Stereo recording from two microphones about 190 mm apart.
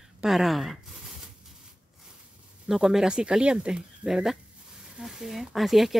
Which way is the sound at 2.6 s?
Centre (ahead or behind).